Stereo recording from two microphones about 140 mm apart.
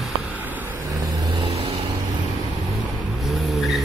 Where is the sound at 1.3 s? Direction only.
45° right (ahead or behind).